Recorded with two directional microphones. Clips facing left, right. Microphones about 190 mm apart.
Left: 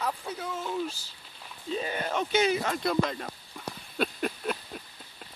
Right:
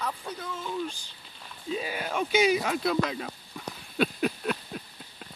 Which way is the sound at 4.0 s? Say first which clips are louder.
Right 3 dB; centre (ahead or behind).